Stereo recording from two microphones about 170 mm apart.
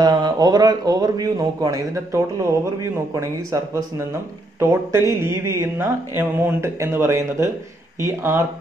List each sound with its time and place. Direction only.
0.0 s speech: 25° right (ahead or behind)